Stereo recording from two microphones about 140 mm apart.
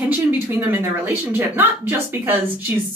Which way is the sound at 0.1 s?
15° right (ahead or behind).